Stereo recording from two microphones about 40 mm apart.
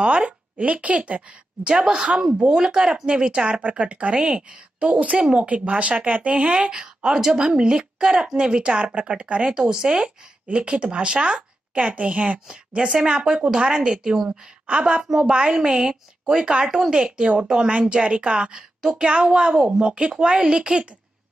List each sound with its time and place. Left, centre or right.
0.0 s a woman's voice: right
5.5 s a woman's voice: right
6.8 s a woman's voice: centre